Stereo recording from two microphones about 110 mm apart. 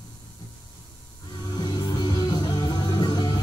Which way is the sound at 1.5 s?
40° left (ahead or behind).